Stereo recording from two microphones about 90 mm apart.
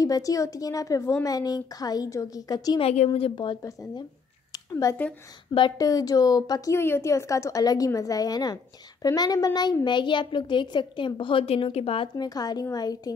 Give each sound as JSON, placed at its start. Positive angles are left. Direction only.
{"t": 0.0, "sound": "a woman's voice", "side_deg": 40}
{"t": 2.8, "sound": "a woman's voice", "side_deg": 85}
{"t": 4.5, "sound": "a sound", "side_deg": 40}
{"t": 5.8, "sound": "a woman's voice", "side_deg": 40}
{"t": 6.7, "sound": "a woman's voice", "side_deg": 30}
{"t": 9.8, "sound": "a woman's voice", "side_deg": 60}
{"t": 12.2, "sound": "a woman's voice", "side_deg": 45}